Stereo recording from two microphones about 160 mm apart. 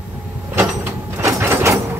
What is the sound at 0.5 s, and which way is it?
Sliding door, 15° right (ahead or behind).